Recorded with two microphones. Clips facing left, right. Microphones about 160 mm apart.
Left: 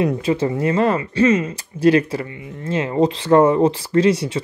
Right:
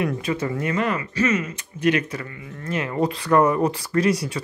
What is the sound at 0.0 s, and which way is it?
Speech, 25° left (ahead or behind).